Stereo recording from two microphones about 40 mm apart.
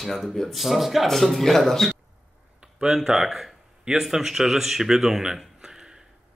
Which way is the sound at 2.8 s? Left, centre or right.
Centre.